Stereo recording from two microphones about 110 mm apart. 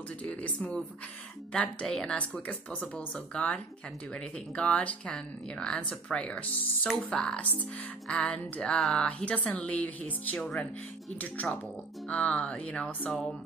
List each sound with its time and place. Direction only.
0.2 s speech: 10° left (ahead or behind)
10.3 s speech: 5° left (ahead or behind)
11.1 s speech: 15° left (ahead or behind)
13.1 s speech: centre (ahead or behind)